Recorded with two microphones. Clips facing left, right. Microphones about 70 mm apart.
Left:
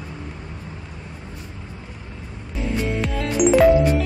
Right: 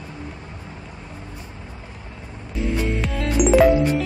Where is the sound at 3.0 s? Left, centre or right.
Centre.